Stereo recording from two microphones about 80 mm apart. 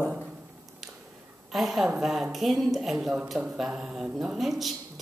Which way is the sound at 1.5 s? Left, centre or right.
Centre.